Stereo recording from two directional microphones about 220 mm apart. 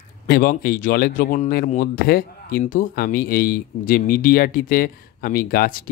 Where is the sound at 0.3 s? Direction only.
45° left (ahead or behind).